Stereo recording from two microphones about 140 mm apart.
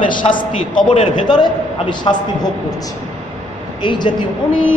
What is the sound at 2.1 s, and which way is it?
Speech, 40° left (ahead or behind).